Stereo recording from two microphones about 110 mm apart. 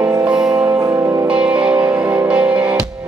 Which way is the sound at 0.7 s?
30° right (ahead or behind).